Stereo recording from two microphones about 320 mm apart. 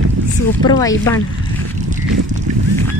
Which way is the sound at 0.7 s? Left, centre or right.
Centre.